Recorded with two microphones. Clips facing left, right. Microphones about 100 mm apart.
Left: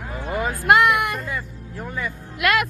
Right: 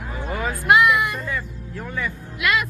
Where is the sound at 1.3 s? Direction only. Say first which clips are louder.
Right 1 dB; 20° left (ahead or behind).